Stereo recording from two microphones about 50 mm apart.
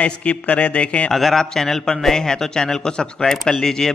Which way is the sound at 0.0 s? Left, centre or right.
Left.